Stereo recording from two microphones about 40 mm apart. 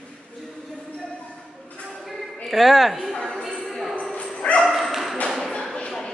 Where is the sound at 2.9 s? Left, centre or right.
Centre.